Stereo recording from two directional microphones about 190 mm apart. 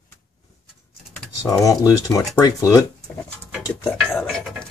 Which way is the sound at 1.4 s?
15° left (ahead or behind).